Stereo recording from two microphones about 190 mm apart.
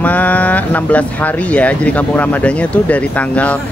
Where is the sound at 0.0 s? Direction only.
10° left (ahead or behind).